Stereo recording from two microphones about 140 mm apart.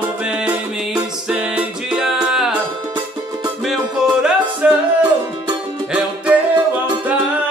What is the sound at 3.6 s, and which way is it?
Music, 5° right (ahead or behind).